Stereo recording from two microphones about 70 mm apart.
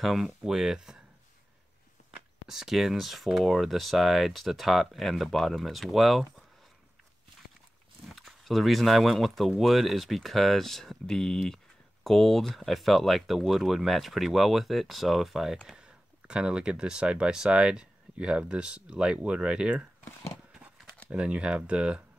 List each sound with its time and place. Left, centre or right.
0.0 s speech: centre
2.4 s speech: centre
8.1 s speech: centre
20.1 s a sound: left
20.5 s a sound: centre
21.1 s speech: centre